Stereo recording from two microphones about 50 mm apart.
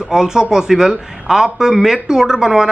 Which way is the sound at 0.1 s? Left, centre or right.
Centre.